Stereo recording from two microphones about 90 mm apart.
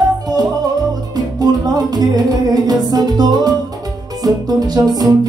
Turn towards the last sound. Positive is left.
turn(degrees=-45)  # may be behind; listen again after turning